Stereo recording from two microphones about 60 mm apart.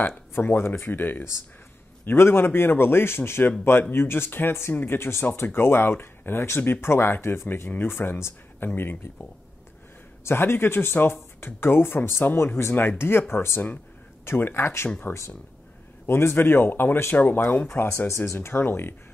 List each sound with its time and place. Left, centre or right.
0.3 s speech: left
10.2 s speech: left
16.1 s speech: left
18.0 s speech: left